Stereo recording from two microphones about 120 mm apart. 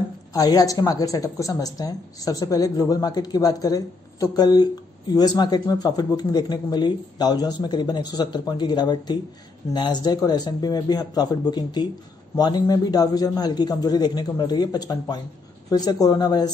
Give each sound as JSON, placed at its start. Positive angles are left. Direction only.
{"t": 0.3, "sound": "a woman's voice", "side_deg": 30}